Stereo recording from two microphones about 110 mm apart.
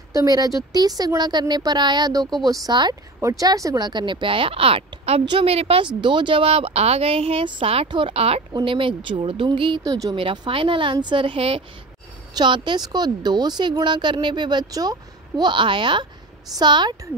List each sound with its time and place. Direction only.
0.1 s a woman's voice: 35° right (ahead or behind); by 5.9 s 65° right (ahead or behind)
5.9 s speech: 45° right (ahead or behind); by 8.4 s 60° right (ahead or behind)
8.5 s a woman's voice: 50° right (ahead or behind)
12.4 s a woman's voice: 45° right (ahead or behind)